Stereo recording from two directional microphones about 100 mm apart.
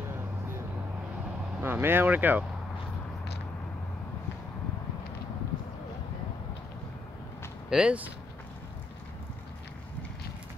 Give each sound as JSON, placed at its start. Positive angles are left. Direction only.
{"t": 1.6, "sound": "speech", "side_deg": -20}
{"t": 7.7, "sound": "speech", "side_deg": -10}